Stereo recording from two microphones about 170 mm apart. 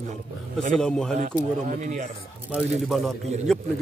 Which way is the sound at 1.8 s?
45° right (ahead or behind).